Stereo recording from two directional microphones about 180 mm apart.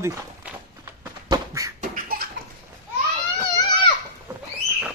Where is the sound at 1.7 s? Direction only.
55° right (ahead or behind).